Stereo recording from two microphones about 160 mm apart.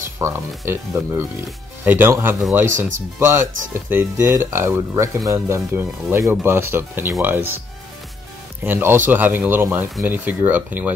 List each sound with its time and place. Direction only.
0.2 s speech: 15° right (ahead or behind)
8.6 s speech: 15° right (ahead or behind)